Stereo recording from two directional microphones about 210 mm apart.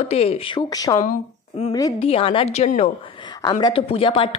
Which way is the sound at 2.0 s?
25° left (ahead or behind).